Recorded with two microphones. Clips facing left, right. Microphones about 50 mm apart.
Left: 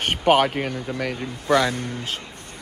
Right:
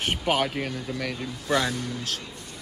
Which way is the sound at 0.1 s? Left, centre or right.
Left.